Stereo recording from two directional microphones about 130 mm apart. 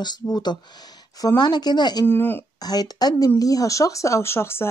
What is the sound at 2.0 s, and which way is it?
Speech, 15° left (ahead or behind).